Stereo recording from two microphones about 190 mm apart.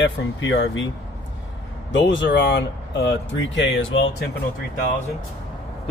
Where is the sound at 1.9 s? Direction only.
75° left (ahead or behind).